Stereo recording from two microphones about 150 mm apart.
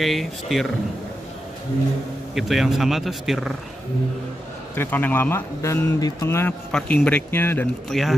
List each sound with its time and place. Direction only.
0.0 s speech: centre (ahead or behind)
2.3 s speech: centre (ahead or behind)
4.7 s a man's voice: 15° left (ahead or behind)
7.9 s speech: centre (ahead or behind)